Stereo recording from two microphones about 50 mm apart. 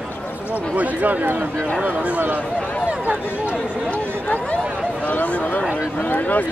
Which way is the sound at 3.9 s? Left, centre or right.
Left.